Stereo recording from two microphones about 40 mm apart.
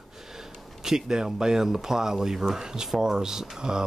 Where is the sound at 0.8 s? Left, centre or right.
Centre.